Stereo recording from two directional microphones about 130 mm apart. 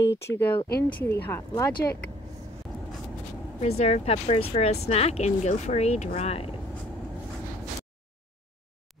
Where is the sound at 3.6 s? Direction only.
55° left (ahead or behind).